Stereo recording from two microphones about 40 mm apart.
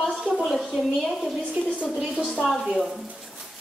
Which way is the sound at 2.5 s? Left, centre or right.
Centre.